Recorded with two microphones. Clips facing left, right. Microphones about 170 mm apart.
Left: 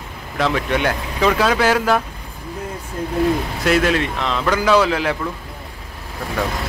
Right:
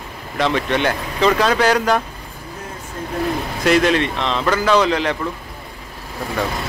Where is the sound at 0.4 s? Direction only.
5° left (ahead or behind).